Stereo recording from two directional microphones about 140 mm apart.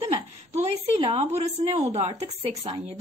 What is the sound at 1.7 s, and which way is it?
Speech, 50° right (ahead or behind).